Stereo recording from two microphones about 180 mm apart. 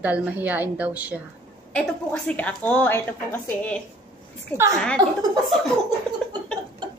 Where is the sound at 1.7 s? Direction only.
5° left (ahead or behind).